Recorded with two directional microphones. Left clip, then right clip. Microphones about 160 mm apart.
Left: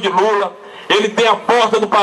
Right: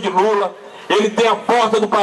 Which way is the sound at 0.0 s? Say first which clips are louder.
Left 1 dB; 10° left (ahead or behind).